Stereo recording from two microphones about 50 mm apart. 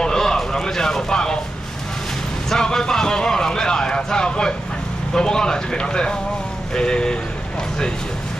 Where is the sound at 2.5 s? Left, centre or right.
Centre.